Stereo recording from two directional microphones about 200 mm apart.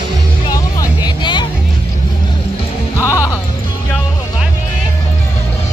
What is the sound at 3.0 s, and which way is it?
Music, 15° left (ahead or behind).